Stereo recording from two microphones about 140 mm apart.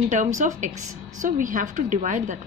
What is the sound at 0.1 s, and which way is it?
Speech, 60° right (ahead or behind).